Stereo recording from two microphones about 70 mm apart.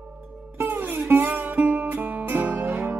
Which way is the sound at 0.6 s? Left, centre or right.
Right.